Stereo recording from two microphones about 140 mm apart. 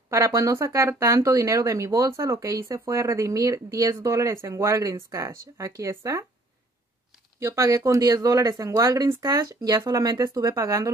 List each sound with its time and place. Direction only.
0.1 s speech: 20° right (ahead or behind)
7.3 s speech: 20° right (ahead or behind)